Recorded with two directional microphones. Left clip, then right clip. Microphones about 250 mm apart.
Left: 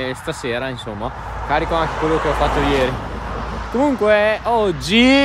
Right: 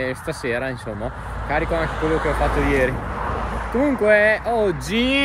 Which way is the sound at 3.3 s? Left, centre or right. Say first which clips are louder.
Right 1 dB; right.